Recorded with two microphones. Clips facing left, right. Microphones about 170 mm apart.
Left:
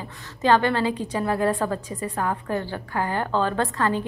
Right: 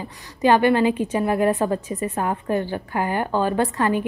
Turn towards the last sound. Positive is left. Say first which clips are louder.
# right 3 dB
turn(degrees=-20)  # may be behind; listen again after turning